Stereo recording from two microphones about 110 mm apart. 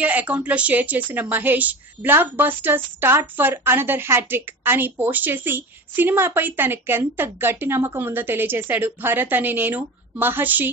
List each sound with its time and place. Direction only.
0.0 s a woman's voice: 15° right (ahead or behind)